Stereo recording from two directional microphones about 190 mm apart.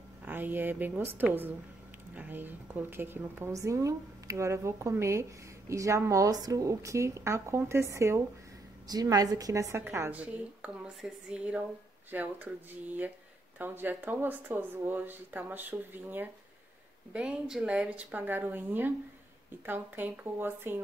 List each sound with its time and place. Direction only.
0.2 s a woman's voice: 10° right (ahead or behind)
13.6 s a woman's voice: 10° right (ahead or behind)